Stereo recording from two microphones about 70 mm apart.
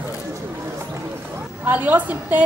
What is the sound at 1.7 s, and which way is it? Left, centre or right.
Speech, right.